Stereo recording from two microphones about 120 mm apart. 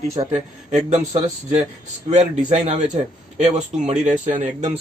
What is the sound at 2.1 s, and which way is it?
Speech, 70° right (ahead or behind).